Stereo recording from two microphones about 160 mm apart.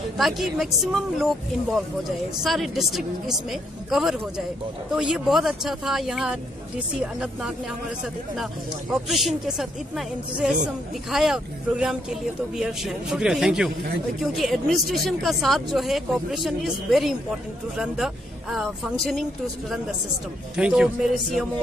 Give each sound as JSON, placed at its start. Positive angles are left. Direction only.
{"t": 0.2, "sound": "speech", "side_deg": 0}
{"t": 8.9, "sound": "speech", "side_deg": 0}
{"t": 20.5, "sound": "speech", "side_deg": -5}